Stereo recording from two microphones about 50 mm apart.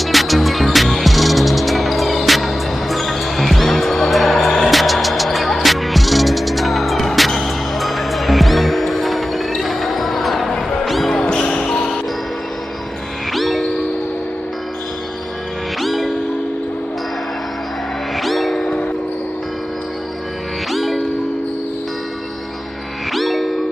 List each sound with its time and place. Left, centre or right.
0.0 s music: centre
11.1 s basketball bounce: centre
13.3 s music: centre
15.8 s music: centre
18.1 s music: centre
20.7 s music: centre
23.1 s music: centre